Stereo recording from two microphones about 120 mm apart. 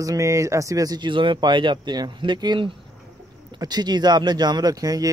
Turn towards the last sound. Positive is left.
turn(degrees=-30)  # may be behind; listen again after turning